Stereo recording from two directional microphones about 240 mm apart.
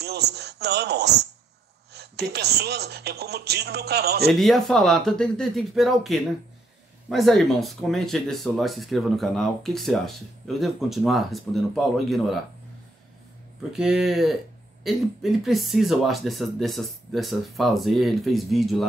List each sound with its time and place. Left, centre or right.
0.0 s speech: right
4.3 s speech: centre
13.7 s speech: centre